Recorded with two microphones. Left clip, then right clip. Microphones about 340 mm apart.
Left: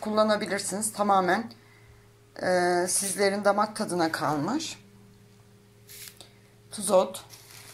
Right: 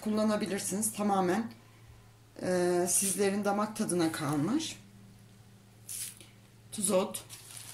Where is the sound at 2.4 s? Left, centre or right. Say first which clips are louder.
Left 5 dB; centre.